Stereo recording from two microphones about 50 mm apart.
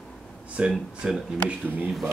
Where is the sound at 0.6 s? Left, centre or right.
Right.